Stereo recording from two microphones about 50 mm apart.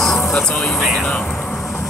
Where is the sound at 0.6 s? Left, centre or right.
Centre.